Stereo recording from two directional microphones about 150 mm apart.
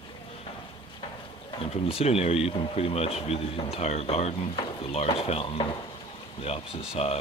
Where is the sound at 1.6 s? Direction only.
40° left (ahead or behind).